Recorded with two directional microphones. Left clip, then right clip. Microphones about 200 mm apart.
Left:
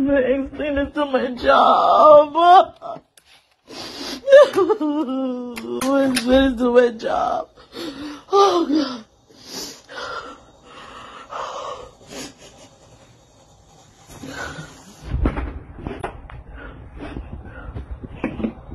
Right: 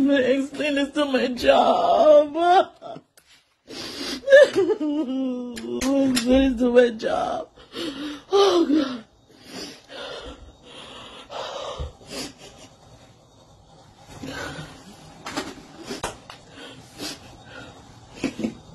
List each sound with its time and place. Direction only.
0.0 s male singing: 25° right (ahead or behind)
1.7 s a sound: 20° right (ahead or behind)
3.6 s pig: 20° right (ahead or behind)
4.6 s whimper: centre (ahead or behind)
5.7 s a sound: centre (ahead or behind)
8.7 s whimper: centre (ahead or behind)
9.4 s wheeze: 55° left (ahead or behind)
9.8 s throat clearing: 5° left (ahead or behind)
10.1 s dog: 15° right (ahead or behind)
11.4 s dog: 25° right (ahead or behind)
14.2 s a sound: centre (ahead or behind)